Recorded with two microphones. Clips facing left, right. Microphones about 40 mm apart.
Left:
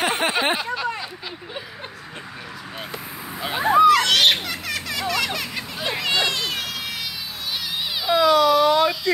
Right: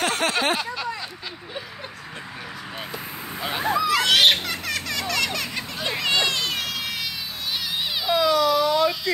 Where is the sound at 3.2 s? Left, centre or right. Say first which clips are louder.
Left 1 dB; centre.